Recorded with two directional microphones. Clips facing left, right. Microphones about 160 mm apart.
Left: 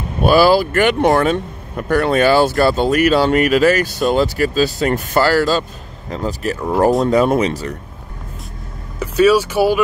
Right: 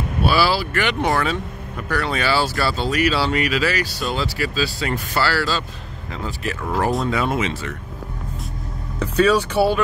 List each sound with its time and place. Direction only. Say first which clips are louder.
0.2 s speech: left 8 dB; 50° left (ahead or behind)
9.0 s speech: left 4 dB; 10° left (ahead or behind)